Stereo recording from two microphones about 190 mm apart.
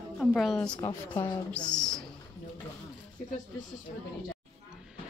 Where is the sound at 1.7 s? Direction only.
5° left (ahead or behind).